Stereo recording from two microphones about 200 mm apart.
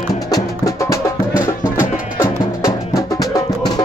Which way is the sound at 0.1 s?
15° left (ahead or behind).